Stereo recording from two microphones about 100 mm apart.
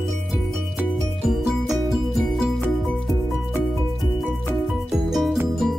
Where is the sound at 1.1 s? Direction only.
Centre (ahead or behind).